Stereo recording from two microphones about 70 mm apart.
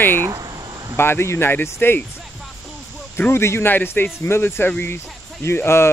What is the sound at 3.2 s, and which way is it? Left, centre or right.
Speech, left.